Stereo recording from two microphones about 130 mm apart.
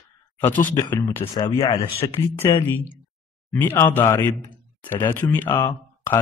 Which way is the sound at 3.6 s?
15° left (ahead or behind).